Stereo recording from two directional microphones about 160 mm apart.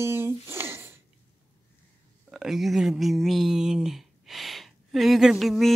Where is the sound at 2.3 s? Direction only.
Centre (ahead or behind).